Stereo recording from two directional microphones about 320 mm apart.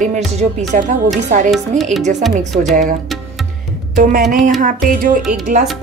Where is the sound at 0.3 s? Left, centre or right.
Right.